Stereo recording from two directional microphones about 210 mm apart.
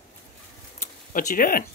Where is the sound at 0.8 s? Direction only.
40° left (ahead or behind).